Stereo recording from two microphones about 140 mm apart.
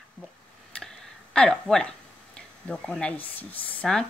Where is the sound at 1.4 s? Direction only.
5° left (ahead or behind).